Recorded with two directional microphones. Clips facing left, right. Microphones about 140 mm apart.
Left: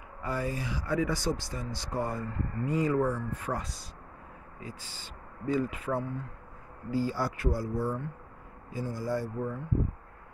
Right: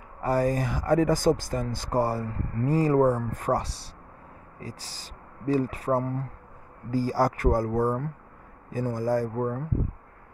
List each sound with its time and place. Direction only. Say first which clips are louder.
0.2 s speech: right 9 dB; 40° right (ahead or behind)